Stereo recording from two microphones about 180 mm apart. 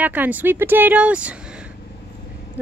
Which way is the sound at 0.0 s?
10° right (ahead or behind).